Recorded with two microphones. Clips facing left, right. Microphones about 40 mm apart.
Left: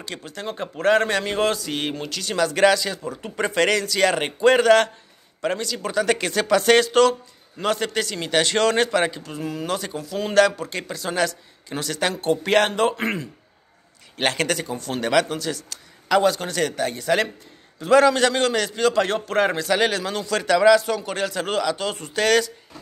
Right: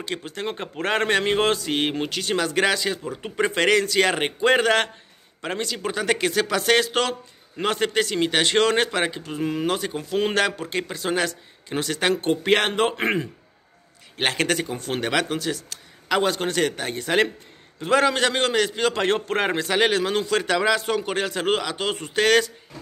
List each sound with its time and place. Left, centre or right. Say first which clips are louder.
0.0 s a man's voice: right 3 dB; right; by 7.0 s centre
7.6 s a man's voice: right 1 dB; right
10.3 s a man's voice: left 5 dB; right
14.1 s a man's voice: even; centre; by 15.0 s right
15.0 s a man's voice: left 4 dB; centre